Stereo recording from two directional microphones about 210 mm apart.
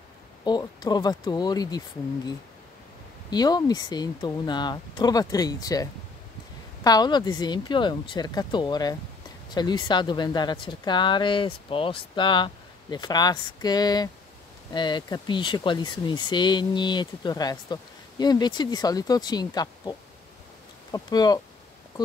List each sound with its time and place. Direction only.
0.5 s speech: 20° left (ahead or behind)
3.3 s speech: 20° left (ahead or behind)